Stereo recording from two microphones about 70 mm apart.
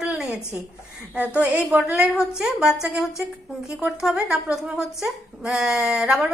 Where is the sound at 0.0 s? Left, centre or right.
Centre.